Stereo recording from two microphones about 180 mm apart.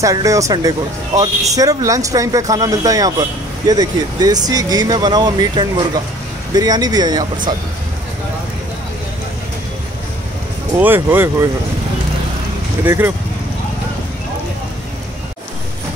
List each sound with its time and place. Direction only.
0.0 s speech: 20° right (ahead or behind)
10.8 s speech: 10° right (ahead or behind)
12.8 s speech: 10° right (ahead or behind)